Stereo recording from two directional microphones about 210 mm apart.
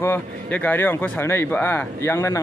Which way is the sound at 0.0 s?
10° left (ahead or behind).